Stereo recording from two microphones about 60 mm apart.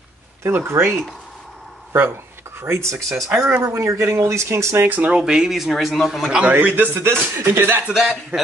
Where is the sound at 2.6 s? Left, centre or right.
Right.